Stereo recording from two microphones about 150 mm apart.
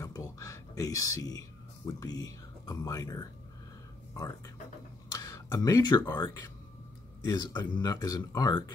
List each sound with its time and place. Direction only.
0.0 s a sound: 20° left (ahead or behind)
1.9 s speech: 25° left (ahead or behind)
5.2 s speech: 25° left (ahead or behind)